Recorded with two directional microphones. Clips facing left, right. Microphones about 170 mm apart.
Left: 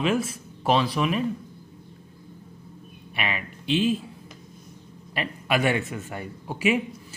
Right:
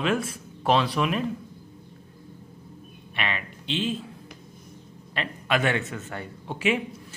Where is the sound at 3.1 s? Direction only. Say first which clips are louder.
Left 1 dB; 10° left (ahead or behind).